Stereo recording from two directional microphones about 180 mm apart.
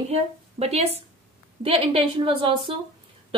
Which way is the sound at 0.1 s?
35° right (ahead or behind).